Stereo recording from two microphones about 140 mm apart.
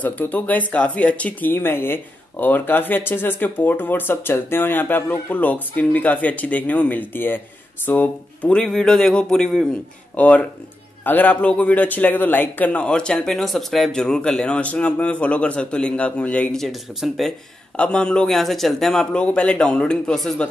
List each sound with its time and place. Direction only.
0.0 s a man's voice: 10° left (ahead or behind)